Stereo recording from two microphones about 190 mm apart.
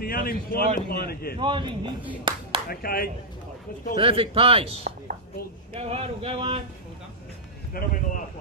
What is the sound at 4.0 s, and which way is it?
A man's voice, 30° right (ahead or behind).